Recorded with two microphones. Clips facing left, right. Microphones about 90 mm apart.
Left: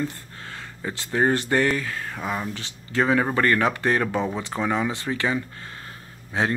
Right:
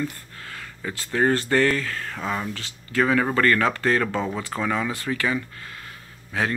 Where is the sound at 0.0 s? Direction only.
25° left (ahead or behind).